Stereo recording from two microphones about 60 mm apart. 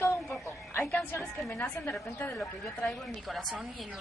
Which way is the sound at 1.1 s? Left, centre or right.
Left.